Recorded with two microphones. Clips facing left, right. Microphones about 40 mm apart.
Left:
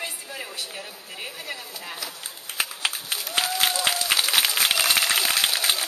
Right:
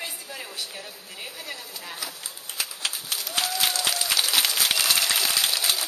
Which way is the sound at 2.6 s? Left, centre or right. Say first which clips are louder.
Left 4 dB; left.